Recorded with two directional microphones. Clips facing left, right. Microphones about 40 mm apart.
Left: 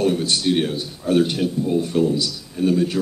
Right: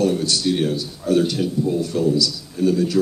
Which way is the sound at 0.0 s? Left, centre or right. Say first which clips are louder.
Even; left.